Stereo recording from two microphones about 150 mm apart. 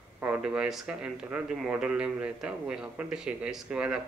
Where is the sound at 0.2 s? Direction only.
10° right (ahead or behind).